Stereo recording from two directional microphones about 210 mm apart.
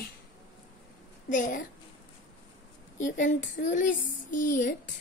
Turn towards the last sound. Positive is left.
turn(degrees=40)  # may be behind; listen again after turning